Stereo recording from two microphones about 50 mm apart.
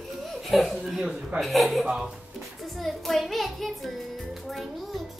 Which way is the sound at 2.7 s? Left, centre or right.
Centre.